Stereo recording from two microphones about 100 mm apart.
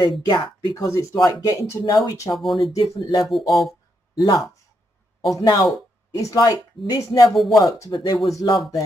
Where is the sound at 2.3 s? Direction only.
Centre (ahead or behind).